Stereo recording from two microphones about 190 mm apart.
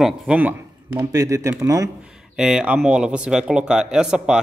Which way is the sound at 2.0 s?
5° right (ahead or behind).